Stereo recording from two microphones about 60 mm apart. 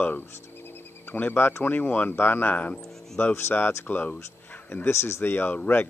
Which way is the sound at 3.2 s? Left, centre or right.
Left.